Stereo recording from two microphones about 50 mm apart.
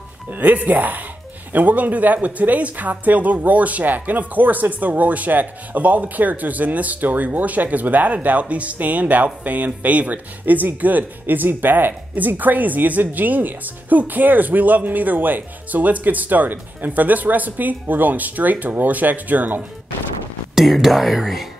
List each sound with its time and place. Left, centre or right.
0.3 s speech: right
20.5 s speech: centre